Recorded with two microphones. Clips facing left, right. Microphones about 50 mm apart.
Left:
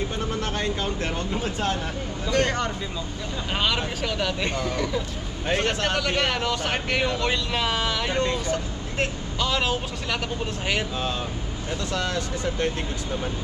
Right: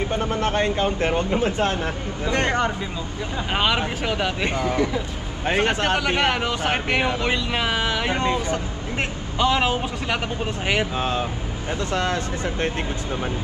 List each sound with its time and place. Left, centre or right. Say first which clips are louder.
0.1 s speech: right 6 dB; right